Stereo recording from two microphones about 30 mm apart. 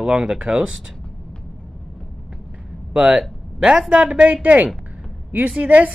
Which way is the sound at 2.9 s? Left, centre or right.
Right.